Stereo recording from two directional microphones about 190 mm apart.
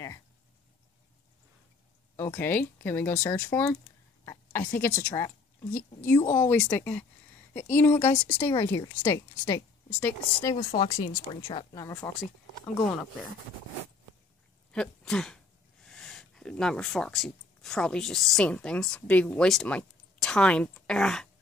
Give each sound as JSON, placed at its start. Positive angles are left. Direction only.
{"t": 2.1, "sound": "speech", "side_deg": 10}
{"t": 4.2, "sound": "a sound", "side_deg": 15}
{"t": 4.7, "sound": "speech", "side_deg": 10}
{"t": 10.8, "sound": "speech", "side_deg": 25}
{"t": 12.0, "sound": "speech", "side_deg": 0}
{"t": 14.7, "sound": "speech", "side_deg": 5}